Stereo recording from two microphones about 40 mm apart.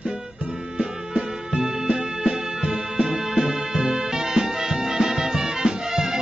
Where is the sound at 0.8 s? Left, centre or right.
Centre.